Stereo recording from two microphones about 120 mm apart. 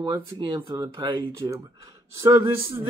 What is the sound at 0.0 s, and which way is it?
Speech, 35° right (ahead or behind).